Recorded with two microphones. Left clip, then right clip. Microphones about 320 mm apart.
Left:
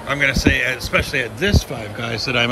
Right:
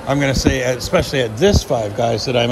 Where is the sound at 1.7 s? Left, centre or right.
Left.